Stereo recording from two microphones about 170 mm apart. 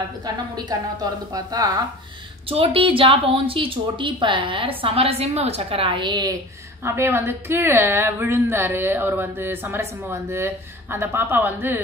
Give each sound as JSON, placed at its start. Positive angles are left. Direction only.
{"t": 0.7, "sound": "a woman's voice", "side_deg": -25}
{"t": 6.8, "sound": "a woman's voice", "side_deg": -15}